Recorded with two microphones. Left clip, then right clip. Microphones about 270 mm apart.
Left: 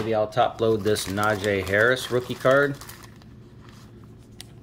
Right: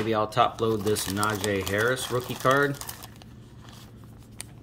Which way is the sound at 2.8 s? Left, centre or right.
Right.